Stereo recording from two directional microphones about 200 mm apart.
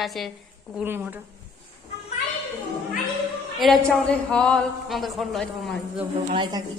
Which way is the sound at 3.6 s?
Centre (ahead or behind).